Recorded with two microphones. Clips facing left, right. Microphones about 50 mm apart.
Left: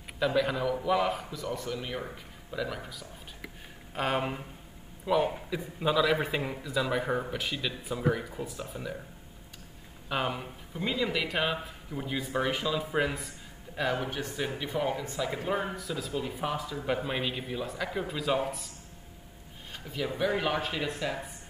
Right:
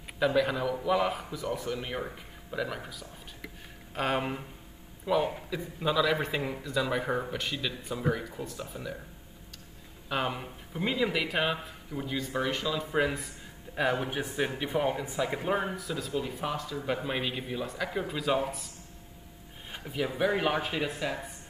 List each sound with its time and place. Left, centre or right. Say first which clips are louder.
0.2 s a man's voice: right 1 dB; centre
10.0 s speech: even; centre
10.7 s speech: right 1 dB; centre
13.7 s speech: right 2 dB; centre
19.7 s a sound: right 2 dB; centre
20.2 s speech: right 1 dB; centre